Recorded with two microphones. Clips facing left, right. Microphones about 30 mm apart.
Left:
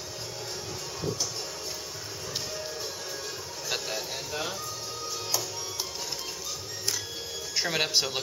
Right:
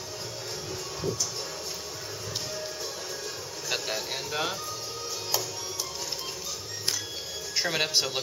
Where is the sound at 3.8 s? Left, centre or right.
Centre.